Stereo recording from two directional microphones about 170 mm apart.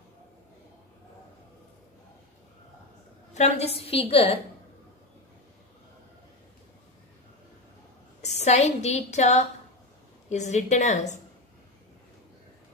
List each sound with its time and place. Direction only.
3.3 s a woman's voice: 40° left (ahead or behind)
8.2 s a woman's voice: 40° left (ahead or behind)